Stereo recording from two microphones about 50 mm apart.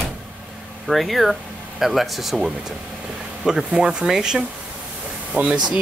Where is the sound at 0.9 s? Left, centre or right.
Centre.